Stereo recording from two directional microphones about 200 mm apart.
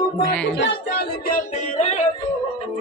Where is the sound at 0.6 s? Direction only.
55° left (ahead or behind); by 2.0 s 35° left (ahead or behind).